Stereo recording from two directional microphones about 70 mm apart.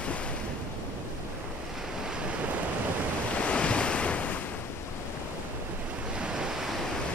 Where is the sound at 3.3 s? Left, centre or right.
Centre.